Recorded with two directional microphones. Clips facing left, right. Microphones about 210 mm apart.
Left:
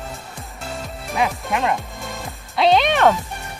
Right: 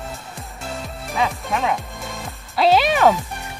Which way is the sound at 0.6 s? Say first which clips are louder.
Even; centre (ahead or behind).